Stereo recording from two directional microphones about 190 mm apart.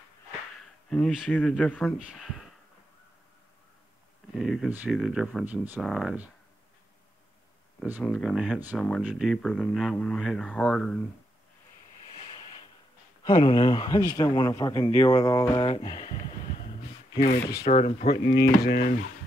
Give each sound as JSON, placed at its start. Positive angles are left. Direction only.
{"t": 0.8, "sound": "speech", "side_deg": 5}
{"t": 4.4, "sound": "speech", "side_deg": 0}
{"t": 8.0, "sound": "speech", "side_deg": 5}
{"t": 12.4, "sound": "a sound", "side_deg": 20}
{"t": 13.2, "sound": "speech", "side_deg": 25}
{"t": 17.2, "sound": "speech", "side_deg": 50}
{"t": 17.6, "sound": "speech", "side_deg": 35}